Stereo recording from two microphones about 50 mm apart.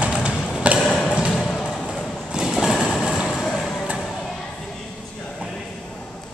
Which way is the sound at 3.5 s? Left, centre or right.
Centre.